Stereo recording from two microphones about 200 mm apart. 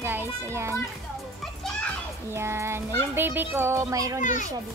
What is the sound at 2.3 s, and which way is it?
A child's voice, 15° right (ahead or behind).